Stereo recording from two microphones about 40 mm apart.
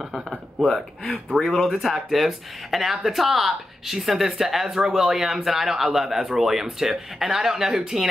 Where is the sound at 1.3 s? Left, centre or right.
Centre.